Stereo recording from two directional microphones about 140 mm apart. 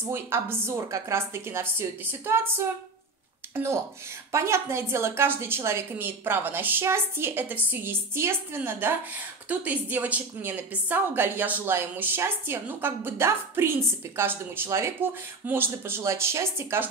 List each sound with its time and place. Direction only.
0.1 s a woman's voice: 15° right (ahead or behind)